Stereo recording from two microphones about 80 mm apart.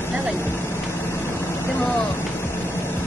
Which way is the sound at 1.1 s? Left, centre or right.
Left.